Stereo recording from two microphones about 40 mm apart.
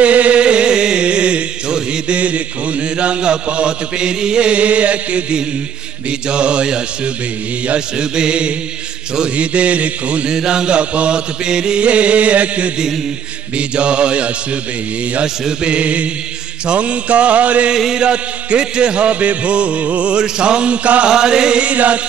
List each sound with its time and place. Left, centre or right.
0.0 s music: right
2.1 s a man's voice: right
6.0 s music: right
9.3 s a man's voice: right
10.3 s music: centre
11.8 s a man's voice: right
13.6 s music: right
15.6 s a man's voice: right
17.7 s chant: centre
18.0 s music: right
21.1 s music: centre
21.6 s a man's voice: right